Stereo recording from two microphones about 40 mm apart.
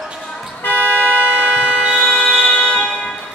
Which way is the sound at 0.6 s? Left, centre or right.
Left.